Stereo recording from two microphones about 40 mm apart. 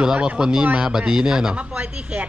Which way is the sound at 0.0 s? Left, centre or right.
Right.